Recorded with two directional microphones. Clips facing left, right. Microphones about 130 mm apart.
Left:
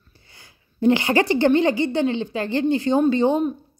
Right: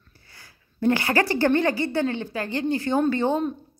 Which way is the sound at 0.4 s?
20° left (ahead or behind).